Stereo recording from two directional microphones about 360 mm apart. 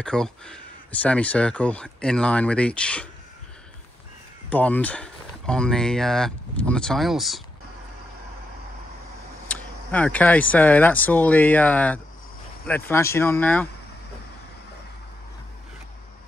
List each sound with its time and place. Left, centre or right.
0.0 s speech: centre
4.5 s speech: centre
9.5 s speech: centre